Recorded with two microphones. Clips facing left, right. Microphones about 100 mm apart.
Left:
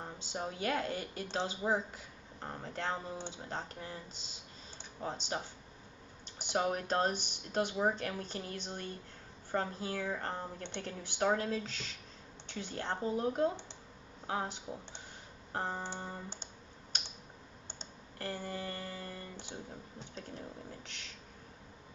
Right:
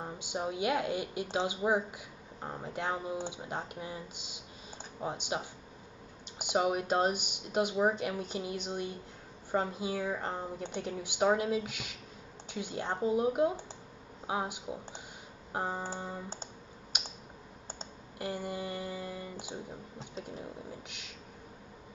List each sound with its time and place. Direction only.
0.0 s a woman's voice: 15° right (ahead or behind)
18.2 s a woman's voice: 15° right (ahead or behind)